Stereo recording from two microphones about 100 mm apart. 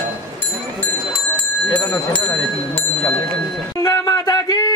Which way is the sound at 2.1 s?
10° left (ahead or behind).